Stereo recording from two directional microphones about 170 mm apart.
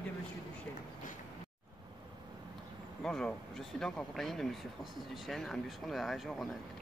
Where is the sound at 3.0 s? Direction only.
5° left (ahead or behind).